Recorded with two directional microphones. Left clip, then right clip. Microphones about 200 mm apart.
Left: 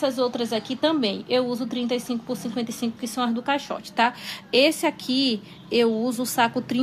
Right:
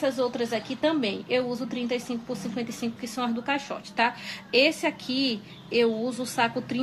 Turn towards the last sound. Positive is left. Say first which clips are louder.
# left 4 dB
turn(degrees=50)  # may be behind; listen again after turning